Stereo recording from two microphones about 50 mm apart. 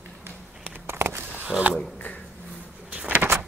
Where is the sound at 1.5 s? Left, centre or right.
Right.